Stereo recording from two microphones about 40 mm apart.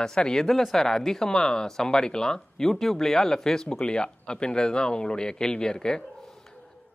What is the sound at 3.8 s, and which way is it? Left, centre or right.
Speech, left.